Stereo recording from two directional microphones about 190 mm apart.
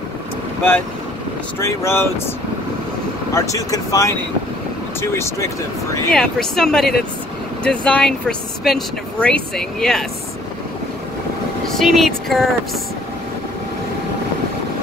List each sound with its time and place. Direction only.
1.6 s speech: 15° left (ahead or behind)
3.3 s speech: 15° left (ahead or behind)
6.1 s speech: centre (ahead or behind)
11.7 s speech: centre (ahead or behind)